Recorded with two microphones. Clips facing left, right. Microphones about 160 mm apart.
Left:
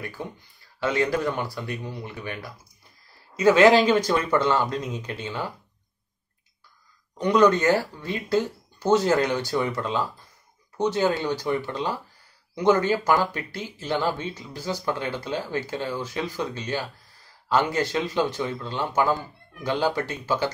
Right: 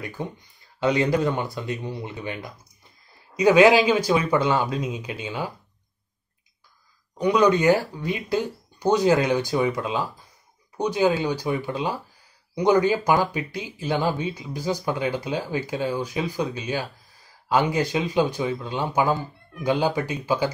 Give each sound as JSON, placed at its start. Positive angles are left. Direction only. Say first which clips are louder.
{"t": 0.0, "sound": "speech", "louder": "right 2 dB", "side_deg": -20}
{"t": 7.2, "sound": "speech", "louder": "even", "side_deg": -10}